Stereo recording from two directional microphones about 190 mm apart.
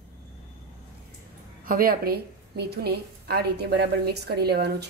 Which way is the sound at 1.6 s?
50° right (ahead or behind).